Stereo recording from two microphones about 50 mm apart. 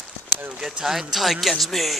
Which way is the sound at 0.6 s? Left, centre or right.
Centre.